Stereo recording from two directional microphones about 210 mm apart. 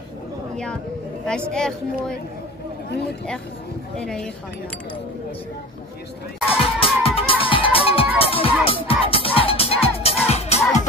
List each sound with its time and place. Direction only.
1.2 s a woman's voice: 5° left (ahead or behind)
4.0 s a woman's voice: 5° left (ahead or behind)
6.6 s music: 25° left (ahead or behind)